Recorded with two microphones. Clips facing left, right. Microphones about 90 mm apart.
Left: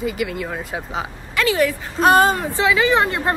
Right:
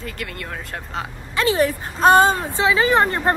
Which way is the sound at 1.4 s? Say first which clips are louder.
Even; 35° right (ahead or behind).